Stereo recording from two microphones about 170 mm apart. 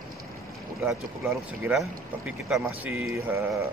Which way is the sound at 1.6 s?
5° right (ahead or behind).